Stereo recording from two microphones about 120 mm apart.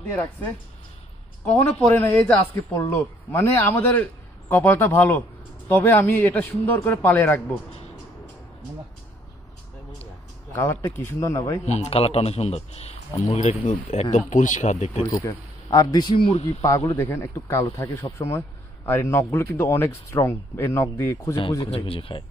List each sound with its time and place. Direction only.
0.1 s a man's voice: 15° left (ahead or behind)
1.9 s a man's voice: 15° left (ahead or behind)
10.5 s speech: 20° left (ahead or behind)
11.6 s speech: 70° left (ahead or behind)
13.7 s speech: 55° left (ahead or behind)
14.1 s speech: 90° left; by 15.1 s 70° left (ahead or behind)
15.1 s speech: 30° left (ahead or behind)
21.6 s speech: 55° left (ahead or behind)